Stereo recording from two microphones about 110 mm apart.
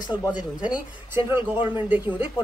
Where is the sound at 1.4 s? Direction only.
45° left (ahead or behind).